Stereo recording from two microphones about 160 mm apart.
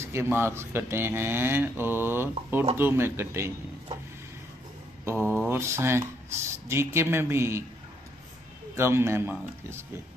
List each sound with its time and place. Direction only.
0.0 s speech: 15° right (ahead or behind)
5.1 s mantra: 10° left (ahead or behind)
5.5 s speech: 15° right (ahead or behind)
8.7 s speech: 15° right (ahead or behind)